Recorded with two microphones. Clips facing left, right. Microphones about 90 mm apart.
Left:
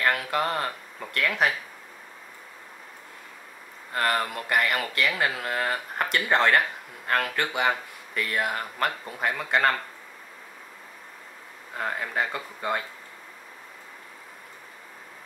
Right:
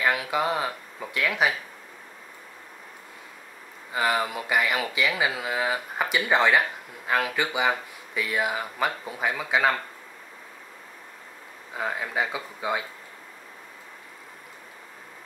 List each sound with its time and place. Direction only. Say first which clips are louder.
0.0 s speech: right 1 dB; 5° right (ahead or behind)
3.9 s speech: right 1 dB; 5° right (ahead or behind)
11.7 s speech: right 1 dB; centre (ahead or behind)